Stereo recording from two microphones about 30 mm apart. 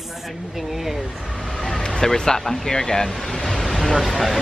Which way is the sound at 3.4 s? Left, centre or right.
Centre.